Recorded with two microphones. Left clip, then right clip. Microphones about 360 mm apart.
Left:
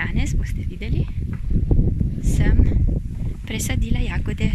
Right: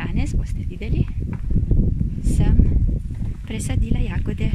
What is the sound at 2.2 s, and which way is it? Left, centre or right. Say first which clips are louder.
Speech: even; centre.